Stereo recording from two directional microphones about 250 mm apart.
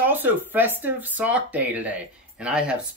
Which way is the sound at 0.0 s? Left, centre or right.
Centre.